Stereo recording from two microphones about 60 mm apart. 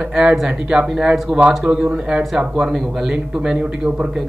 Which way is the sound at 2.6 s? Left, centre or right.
Centre.